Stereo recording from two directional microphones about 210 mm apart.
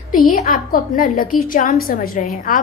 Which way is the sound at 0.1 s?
40° left (ahead or behind).